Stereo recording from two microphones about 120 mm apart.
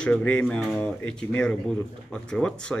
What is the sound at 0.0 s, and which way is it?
A man's voice, 10° left (ahead or behind).